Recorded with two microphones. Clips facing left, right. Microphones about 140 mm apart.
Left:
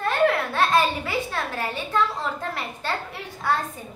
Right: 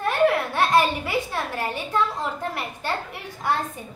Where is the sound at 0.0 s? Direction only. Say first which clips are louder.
Right 1 dB; 15° right (ahead or behind).